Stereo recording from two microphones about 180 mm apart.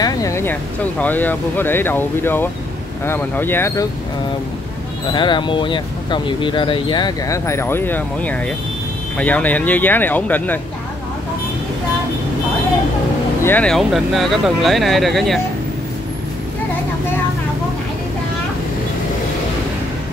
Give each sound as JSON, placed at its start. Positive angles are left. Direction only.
{"t": 0.0, "sound": "speech", "side_deg": 15}
{"t": 5.1, "sound": "speech", "side_deg": 25}
{"t": 13.4, "sound": "speech", "side_deg": 10}